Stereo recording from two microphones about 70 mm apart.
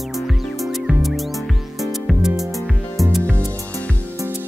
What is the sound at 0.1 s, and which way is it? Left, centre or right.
Music, centre.